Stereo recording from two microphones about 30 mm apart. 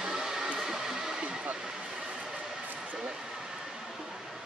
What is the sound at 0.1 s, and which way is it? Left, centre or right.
Hair dryer, centre.